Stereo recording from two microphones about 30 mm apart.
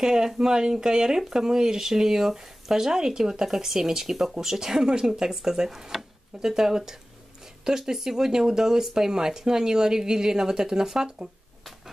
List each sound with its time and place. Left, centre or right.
0.0 s speech: centre
5.9 s a sound: centre
6.5 s speech: centre